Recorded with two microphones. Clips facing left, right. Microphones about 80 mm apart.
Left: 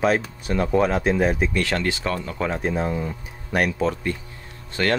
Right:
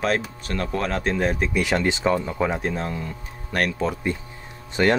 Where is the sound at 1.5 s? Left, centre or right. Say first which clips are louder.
Right 2 dB; centre.